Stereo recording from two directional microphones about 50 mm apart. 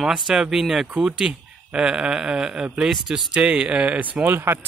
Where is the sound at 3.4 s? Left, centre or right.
Right.